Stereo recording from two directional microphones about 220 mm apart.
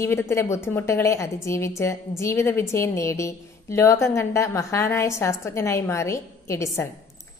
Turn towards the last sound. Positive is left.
turn(degrees=10)  # may be behind; listen again after turning